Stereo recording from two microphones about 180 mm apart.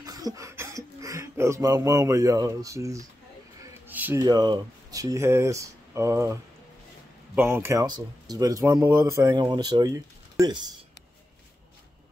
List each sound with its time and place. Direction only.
0.0 s speech: 20° right (ahead or behind)
3.8 s a sound: 10° right (ahead or behind)
4.2 s speech: 25° right (ahead or behind)
7.3 s speech: 15° right (ahead or behind)